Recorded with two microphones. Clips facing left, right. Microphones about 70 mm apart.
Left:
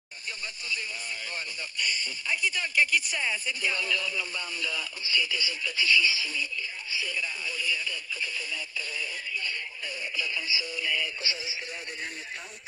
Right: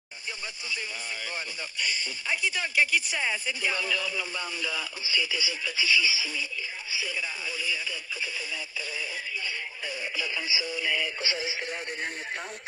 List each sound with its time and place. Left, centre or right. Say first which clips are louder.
2.5 s speech: even; right
10.5 s speech: right 2 dB; centre
10.8 s synthetic singing: right 2 dB; right
11.1 s speech: right 4 dB; right